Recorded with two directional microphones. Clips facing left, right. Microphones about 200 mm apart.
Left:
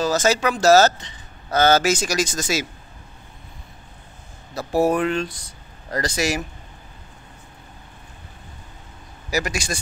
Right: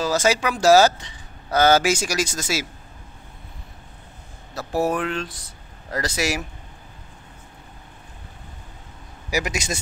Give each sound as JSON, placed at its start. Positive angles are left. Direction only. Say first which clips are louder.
{"t": 0.0, "sound": "speech", "louder": "left 1 dB", "side_deg": -10}
{"t": 4.6, "sound": "speech", "louder": "left 4 dB", "side_deg": 0}
{"t": 9.3, "sound": "a man's voice", "louder": "even", "side_deg": -15}